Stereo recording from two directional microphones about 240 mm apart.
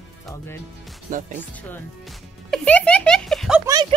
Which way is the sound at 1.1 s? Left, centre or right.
Right.